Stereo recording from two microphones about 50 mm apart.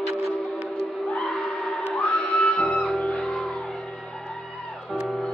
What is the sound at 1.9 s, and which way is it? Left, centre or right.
Music, left.